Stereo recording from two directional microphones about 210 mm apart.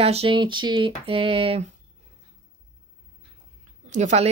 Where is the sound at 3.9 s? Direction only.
35° right (ahead or behind).